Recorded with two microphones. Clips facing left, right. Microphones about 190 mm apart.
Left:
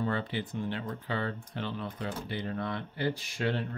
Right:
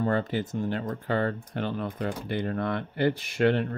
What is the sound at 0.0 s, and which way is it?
Speech, 45° right (ahead or behind).